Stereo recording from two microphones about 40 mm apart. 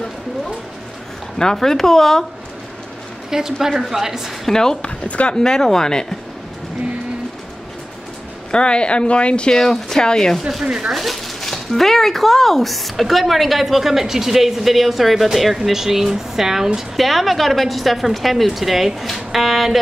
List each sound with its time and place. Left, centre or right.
1.4 s speech: centre
3.3 s speech: centre
4.5 s speech: centre
4.8 s speech: left
5.3 s speech: centre
8.5 s speech: left
9.5 s speech: centre
10.6 s speech: right
10.9 s speech: centre
11.4 s speech: centre